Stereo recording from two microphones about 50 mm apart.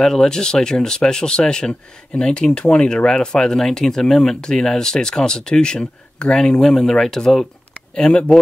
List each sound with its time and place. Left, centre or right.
0.0 s speech: centre
7.9 s speech: left